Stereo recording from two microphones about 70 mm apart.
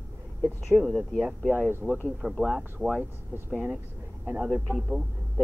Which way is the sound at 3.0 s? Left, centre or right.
Right.